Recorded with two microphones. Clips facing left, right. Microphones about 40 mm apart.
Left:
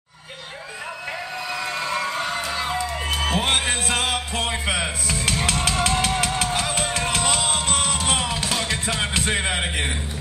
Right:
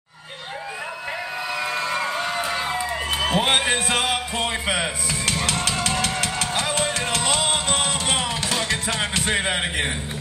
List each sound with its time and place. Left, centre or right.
1.5 s music: centre
6.4 s music: centre